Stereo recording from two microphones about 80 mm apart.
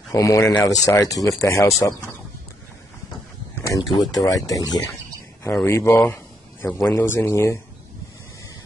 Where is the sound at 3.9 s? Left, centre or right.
Left.